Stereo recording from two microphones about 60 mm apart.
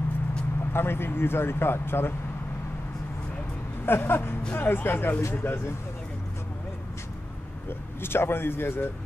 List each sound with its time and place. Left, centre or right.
0.7 s speech: left
3.8 s speech: left
7.6 s speech: left